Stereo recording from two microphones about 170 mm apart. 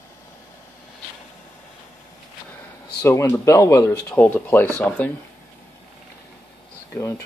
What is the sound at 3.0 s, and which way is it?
Speech, 15° left (ahead or behind).